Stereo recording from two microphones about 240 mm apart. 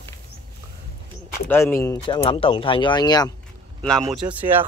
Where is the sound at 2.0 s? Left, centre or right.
Left.